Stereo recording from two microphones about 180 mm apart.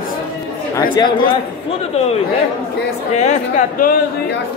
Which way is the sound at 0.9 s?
25° left (ahead or behind).